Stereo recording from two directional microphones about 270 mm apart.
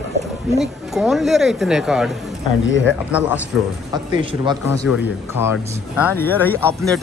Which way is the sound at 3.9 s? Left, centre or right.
Centre.